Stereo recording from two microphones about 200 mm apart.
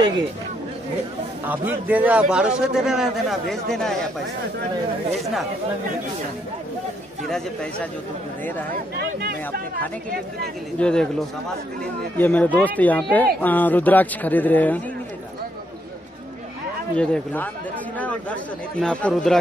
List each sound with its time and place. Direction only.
1.4 s speech: 10° right (ahead or behind)
5.2 s speech: centre (ahead or behind)
7.2 s speech: 5° left (ahead or behind)
8.9 s speech: 50° right (ahead or behind)
10.8 s speech: 5° left (ahead or behind)
16.9 s speech: 5° left (ahead or behind)